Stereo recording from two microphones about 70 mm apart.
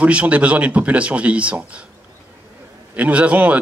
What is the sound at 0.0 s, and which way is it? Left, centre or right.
Speech, centre.